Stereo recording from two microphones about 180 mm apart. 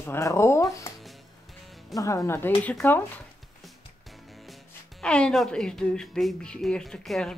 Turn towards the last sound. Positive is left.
turn(degrees=0)  # may be behind; listen again after turning